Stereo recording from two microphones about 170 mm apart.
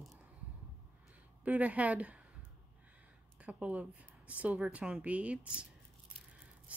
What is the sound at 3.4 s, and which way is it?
Speech, 10° right (ahead or behind).